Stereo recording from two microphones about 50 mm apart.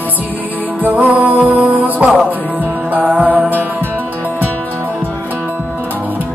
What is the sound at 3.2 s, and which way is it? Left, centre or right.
Music, right.